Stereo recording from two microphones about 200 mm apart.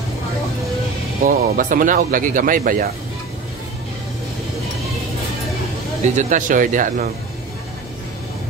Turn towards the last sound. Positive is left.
turn(degrees=-40)  # may be behind; listen again after turning